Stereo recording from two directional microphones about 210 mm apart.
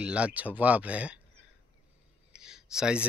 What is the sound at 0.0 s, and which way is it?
Speech, 5° right (ahead or behind).